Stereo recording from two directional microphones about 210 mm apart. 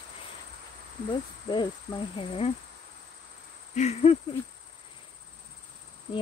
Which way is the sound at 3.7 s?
30° left (ahead or behind).